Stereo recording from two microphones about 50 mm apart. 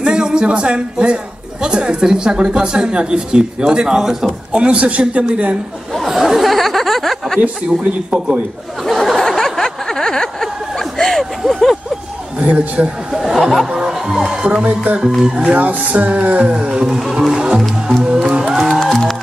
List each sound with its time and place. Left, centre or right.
0.0 s a man's voice: centre
4.5 s speech: right
5.9 s chatter: centre
7.6 s speech: centre
8.8 s a sound: centre
9.3 s chuckle: centre
12.4 s speech: right
13.1 s speech: centre
13.7 s music: centre
14.3 s speech: centre
15.0 s speech: centre
17.3 s music: centre
17.6 s music: centre
18.0 s music: right